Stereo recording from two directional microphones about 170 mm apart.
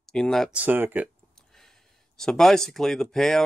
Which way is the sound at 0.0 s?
5° left (ahead or behind).